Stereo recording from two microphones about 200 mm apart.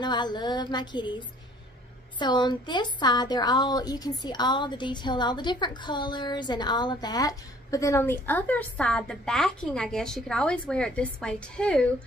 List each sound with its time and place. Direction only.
0.0 s a woman's voice: 20° left (ahead or behind); by 11.9 s 5° left (ahead or behind)